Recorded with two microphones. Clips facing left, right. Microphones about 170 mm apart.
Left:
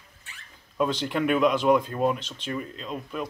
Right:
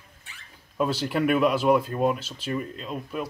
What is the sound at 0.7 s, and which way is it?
Speech, 5° right (ahead or behind).